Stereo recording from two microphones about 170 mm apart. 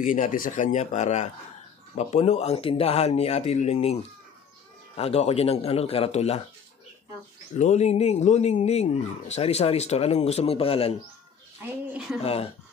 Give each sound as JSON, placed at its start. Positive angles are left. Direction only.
{"t": 0.0, "sound": "speech", "side_deg": 50}
{"t": 7.5, "sound": "speech", "side_deg": 40}
{"t": 12.2, "sound": "speech", "side_deg": 35}